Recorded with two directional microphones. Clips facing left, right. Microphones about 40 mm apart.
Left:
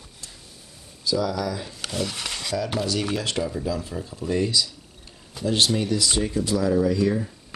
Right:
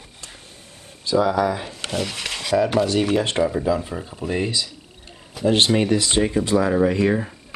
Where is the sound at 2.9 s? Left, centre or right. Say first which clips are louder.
Right 6 dB; right.